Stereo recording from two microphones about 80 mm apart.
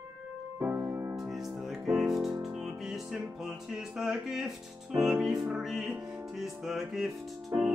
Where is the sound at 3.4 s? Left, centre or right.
Centre.